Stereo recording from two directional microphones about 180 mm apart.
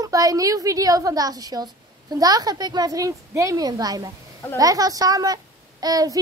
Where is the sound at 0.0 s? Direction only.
20° right (ahead or behind).